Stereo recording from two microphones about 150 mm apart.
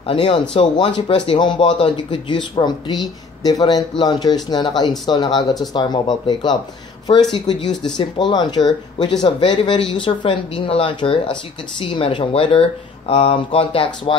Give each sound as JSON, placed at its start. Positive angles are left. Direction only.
{"t": 0.0, "sound": "speech", "side_deg": 35}